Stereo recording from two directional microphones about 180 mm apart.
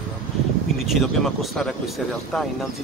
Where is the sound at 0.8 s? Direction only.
Centre (ahead or behind).